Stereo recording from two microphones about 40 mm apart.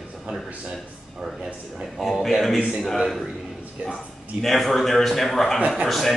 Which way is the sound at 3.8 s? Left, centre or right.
Right.